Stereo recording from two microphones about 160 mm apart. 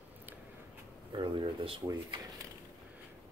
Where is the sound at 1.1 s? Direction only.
30° right (ahead or behind).